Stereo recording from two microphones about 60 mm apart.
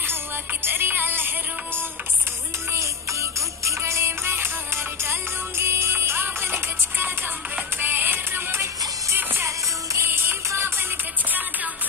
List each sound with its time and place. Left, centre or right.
0.0 s music: right
2.7 s music: right
10.0 s music: right
11.2 s music: right